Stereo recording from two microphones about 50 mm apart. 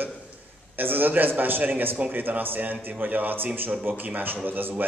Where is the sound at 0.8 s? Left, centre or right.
Right.